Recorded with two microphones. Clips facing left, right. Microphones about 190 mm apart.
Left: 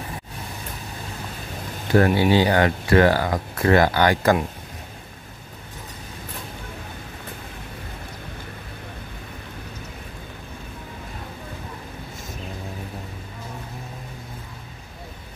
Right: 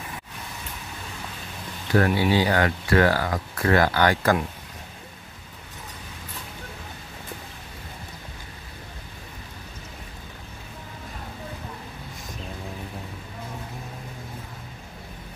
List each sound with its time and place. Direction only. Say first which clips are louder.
2.0 s speech: left 3 dB; 25° left (ahead or behind)